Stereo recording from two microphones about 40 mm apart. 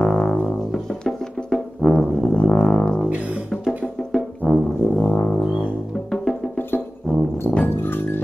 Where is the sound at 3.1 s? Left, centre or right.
Right.